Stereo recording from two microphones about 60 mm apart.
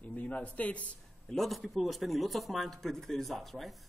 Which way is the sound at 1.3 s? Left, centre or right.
Centre.